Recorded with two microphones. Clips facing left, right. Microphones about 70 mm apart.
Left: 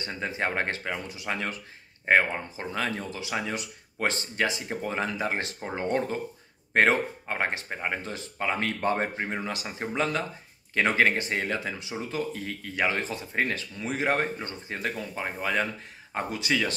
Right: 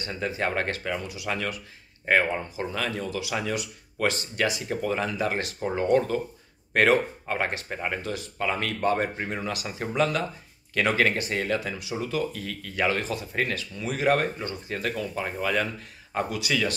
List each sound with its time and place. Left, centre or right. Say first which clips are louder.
0.0 s speech: right 2 dB; left
2.7 s speech: even; left